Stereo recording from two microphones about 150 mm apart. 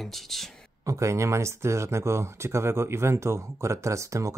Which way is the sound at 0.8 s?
20° right (ahead or behind).